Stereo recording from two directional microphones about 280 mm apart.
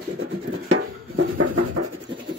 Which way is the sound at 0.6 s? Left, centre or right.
Right.